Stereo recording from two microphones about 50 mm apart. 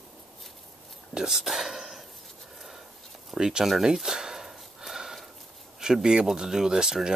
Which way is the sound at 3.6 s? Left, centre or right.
Centre.